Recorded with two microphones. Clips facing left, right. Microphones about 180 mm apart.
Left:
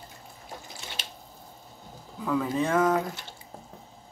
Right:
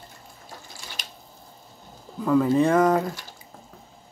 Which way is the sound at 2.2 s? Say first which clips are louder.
Right 7 dB; 15° right (ahead or behind).